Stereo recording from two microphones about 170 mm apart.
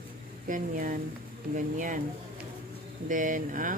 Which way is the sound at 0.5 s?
50° right (ahead or behind).